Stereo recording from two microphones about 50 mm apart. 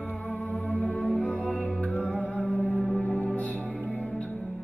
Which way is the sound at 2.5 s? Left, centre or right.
Left.